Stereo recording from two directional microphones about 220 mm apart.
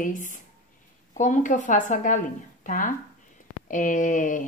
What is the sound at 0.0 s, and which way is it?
Speech, 35° left (ahead or behind).